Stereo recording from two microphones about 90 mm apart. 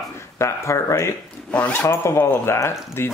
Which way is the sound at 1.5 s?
15° left (ahead or behind).